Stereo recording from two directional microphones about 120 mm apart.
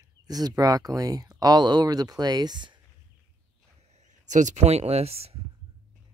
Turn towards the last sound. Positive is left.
turn(degrees=-55)  # may be behind; listen again after turning